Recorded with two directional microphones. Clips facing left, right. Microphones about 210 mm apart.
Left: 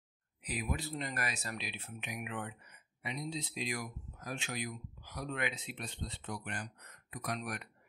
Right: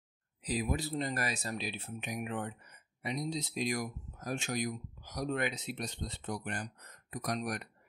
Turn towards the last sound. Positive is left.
turn(degrees=-40)  # may be behind; listen again after turning